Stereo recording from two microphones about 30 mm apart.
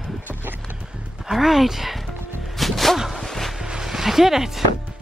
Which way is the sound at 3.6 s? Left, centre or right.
Right.